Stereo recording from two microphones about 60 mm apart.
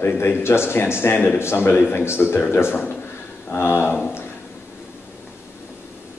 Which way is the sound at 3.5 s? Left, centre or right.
Left.